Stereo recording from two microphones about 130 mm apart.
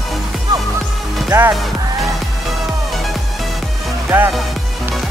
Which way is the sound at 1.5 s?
Centre (ahead or behind).